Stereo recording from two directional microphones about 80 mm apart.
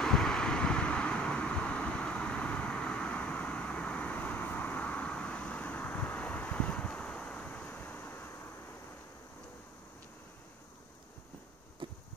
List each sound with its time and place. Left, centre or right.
0.0 s vehicle: centre; by 8.3 s left